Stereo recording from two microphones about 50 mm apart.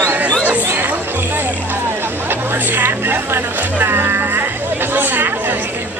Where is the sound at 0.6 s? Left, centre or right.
Right.